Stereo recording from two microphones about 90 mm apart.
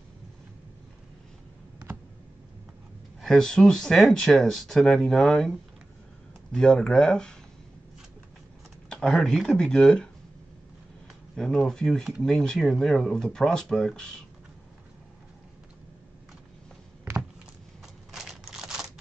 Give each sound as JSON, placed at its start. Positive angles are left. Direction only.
{"t": 3.2, "sound": "speech", "side_deg": 5}
{"t": 6.5, "sound": "speech", "side_deg": 5}
{"t": 8.8, "sound": "speech", "side_deg": 10}
{"t": 11.3, "sound": "speech", "side_deg": 5}
{"t": 17.1, "sound": "a sound", "side_deg": -35}
{"t": 18.1, "sound": "a sound", "side_deg": -5}